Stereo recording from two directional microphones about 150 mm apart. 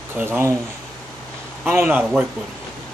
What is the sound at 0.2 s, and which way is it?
Speech, 15° right (ahead or behind).